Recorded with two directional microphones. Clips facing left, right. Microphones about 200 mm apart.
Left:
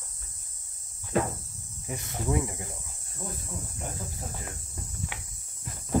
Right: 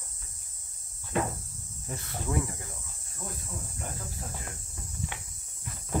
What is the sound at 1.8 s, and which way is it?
Speech, 15° left (ahead or behind).